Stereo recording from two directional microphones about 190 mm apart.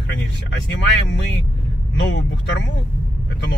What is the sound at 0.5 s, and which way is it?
Speech, 70° left (ahead or behind).